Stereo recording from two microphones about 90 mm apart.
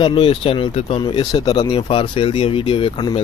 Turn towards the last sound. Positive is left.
turn(degrees=70)  # may be behind; listen again after turning